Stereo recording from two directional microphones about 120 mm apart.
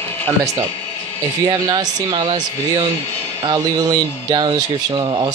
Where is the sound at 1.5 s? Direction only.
35° right (ahead or behind).